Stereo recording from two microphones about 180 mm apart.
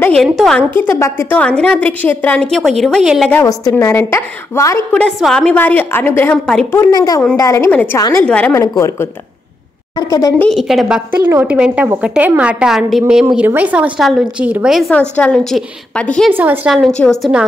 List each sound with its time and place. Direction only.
0.0 s a woman's voice: 5° left (ahead or behind)
3.3 s a woman's voice: 15° left (ahead or behind)
6.8 s a woman's voice: 20° left (ahead or behind)
10.4 s a woman's voice: centre (ahead or behind)
16.3 s a woman's voice: 10° right (ahead or behind)